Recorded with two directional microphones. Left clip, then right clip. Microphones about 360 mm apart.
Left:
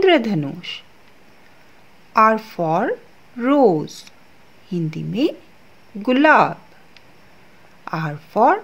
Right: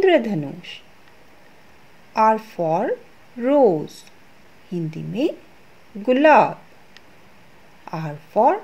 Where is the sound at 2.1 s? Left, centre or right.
Centre.